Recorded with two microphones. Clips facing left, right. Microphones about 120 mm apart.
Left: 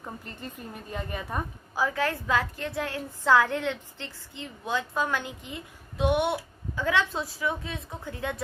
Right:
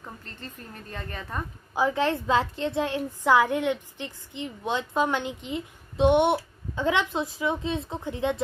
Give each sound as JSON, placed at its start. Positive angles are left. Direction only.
{"t": 0.0, "sound": "a woman's voice", "side_deg": 10}
{"t": 1.8, "sound": "a woman's voice", "side_deg": -25}